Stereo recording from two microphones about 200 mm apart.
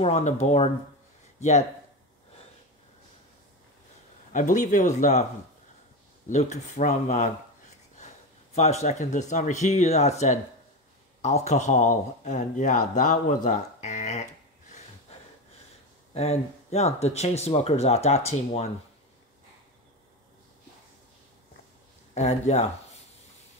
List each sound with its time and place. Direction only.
0.0 s speech: 35° left (ahead or behind)
4.3 s speech: 40° left (ahead or behind)
6.2 s speech: 35° left (ahead or behind)
8.5 s speech: 35° left (ahead or behind)
22.1 s speech: 35° left (ahead or behind)